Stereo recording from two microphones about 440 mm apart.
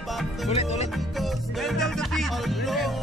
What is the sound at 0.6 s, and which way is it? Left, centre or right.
Speech, centre.